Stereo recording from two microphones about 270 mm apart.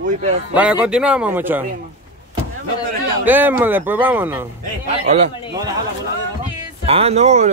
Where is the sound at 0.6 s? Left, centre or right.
Centre.